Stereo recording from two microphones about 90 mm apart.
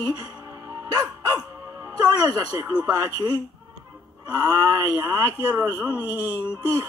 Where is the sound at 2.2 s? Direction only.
30° right (ahead or behind).